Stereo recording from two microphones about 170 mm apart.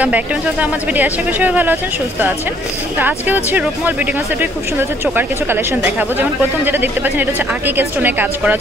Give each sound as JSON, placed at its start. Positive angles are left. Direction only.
{"t": 0.0, "sound": "speech", "side_deg": -10}
{"t": 3.0, "sound": "speech", "side_deg": -10}